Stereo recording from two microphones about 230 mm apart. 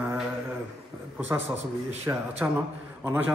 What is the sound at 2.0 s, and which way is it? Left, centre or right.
Speech, centre.